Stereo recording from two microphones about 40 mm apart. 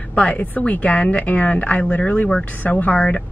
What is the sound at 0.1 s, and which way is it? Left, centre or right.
Speech, left.